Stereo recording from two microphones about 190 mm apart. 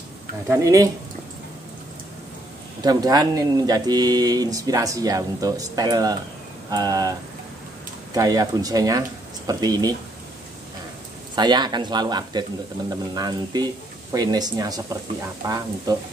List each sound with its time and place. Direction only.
0.5 s speech: 15° right (ahead or behind)
2.8 s speech: 20° right (ahead or behind)
11.3 s speech: 20° right (ahead or behind)